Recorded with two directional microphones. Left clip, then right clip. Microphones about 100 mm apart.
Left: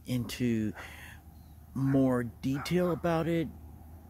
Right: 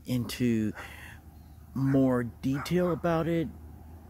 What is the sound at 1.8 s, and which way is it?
Speech, 5° left (ahead or behind).